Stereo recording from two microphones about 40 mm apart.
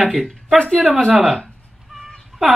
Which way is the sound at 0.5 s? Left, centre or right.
Left.